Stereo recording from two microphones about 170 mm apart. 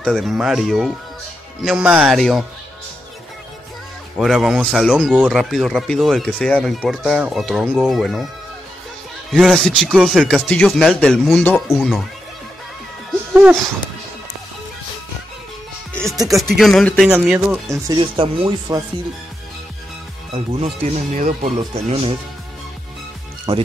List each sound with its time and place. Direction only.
0.0 s speech: centre (ahead or behind)
4.2 s speech: centre (ahead or behind)
9.3 s speech: centre (ahead or behind)
13.3 s speech: 10° right (ahead or behind)
16.0 s music: 20° right (ahead or behind)
16.5 s speech: centre (ahead or behind)
17.1 s speech: 5° right (ahead or behind)
17.6 s speech: 25° right (ahead or behind)
20.3 s speech: 35° right (ahead or behind)
23.5 s speech: 20° right (ahead or behind)